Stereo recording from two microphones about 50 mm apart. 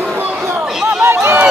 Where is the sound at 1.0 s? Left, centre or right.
Right.